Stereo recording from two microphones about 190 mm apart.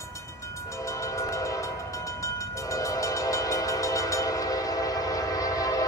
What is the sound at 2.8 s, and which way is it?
Train, 15° left (ahead or behind).